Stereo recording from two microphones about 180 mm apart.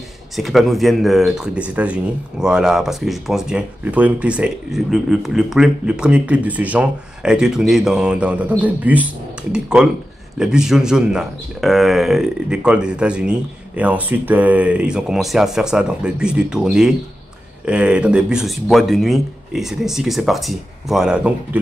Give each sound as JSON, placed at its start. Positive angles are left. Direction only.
{"t": 0.4, "sound": "speech", "side_deg": 0}